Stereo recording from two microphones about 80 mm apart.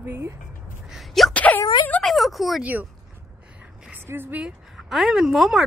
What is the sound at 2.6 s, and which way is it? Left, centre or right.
Speech, centre.